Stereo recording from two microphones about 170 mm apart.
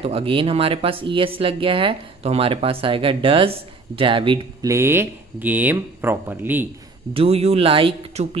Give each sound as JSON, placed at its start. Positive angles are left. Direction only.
{"t": 0.0, "sound": "speech", "side_deg": -35}
{"t": 4.6, "sound": "speech", "side_deg": -15}
{"t": 7.2, "sound": "speech", "side_deg": -35}